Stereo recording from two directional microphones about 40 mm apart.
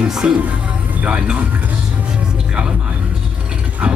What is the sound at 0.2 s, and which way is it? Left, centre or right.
Speech, right.